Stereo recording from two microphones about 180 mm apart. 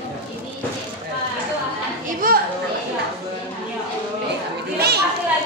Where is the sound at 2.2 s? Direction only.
50° right (ahead or behind).